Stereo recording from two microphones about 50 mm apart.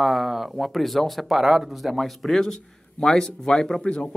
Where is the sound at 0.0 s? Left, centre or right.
Centre.